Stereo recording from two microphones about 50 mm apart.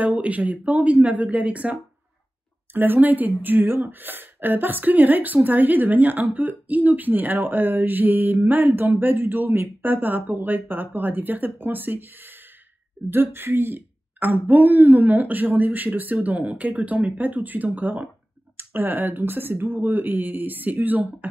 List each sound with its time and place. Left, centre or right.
0.0 s speech: right
2.7 s speech: right
18.6 s speech: right